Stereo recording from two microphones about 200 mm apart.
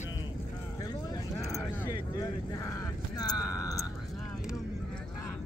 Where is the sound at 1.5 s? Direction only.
15° left (ahead or behind).